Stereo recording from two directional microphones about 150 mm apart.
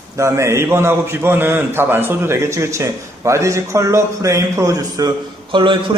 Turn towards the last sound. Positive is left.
turn(degrees=-35)  # may be behind; listen again after turning